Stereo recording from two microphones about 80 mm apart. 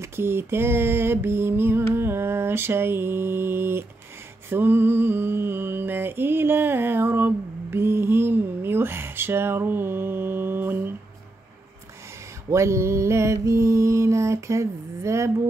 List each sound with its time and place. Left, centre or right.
0.0 s a sound: right
4.5 s mantra: right
12.4 s mantra: right